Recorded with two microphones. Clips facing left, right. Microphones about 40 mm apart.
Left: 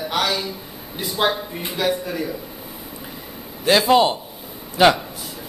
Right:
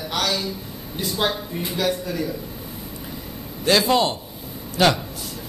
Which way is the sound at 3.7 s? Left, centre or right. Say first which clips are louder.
Left 3 dB; centre.